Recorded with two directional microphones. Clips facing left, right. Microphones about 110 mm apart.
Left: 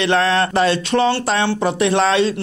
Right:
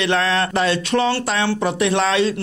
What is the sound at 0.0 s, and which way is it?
Speech, 35° left (ahead or behind).